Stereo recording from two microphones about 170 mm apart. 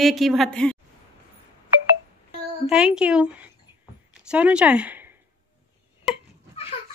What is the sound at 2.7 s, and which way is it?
A woman's voice, 5° right (ahead or behind).